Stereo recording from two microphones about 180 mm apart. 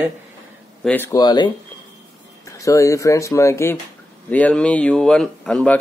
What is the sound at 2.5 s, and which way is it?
Speech, 15° left (ahead or behind).